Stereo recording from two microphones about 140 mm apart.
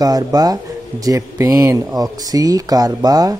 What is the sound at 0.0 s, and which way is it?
A man's voice, 25° right (ahead or behind).